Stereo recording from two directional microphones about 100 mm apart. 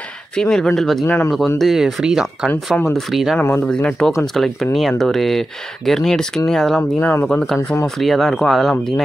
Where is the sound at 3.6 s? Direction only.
5° left (ahead or behind).